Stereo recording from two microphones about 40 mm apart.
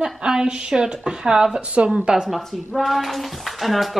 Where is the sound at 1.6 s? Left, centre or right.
Right.